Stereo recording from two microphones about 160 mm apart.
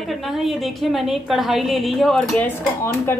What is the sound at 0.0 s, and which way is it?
A woman's voice, centre (ahead or behind).